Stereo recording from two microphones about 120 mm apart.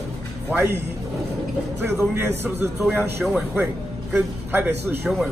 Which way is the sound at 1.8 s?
20° right (ahead or behind).